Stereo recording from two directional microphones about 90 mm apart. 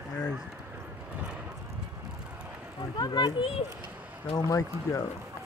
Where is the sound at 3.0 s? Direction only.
50° left (ahead or behind).